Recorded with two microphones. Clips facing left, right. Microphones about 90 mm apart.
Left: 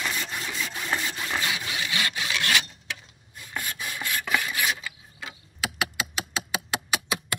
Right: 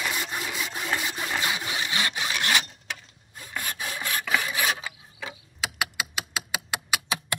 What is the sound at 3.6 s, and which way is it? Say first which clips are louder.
Rub: right 2 dB; 50° right (ahead or behind).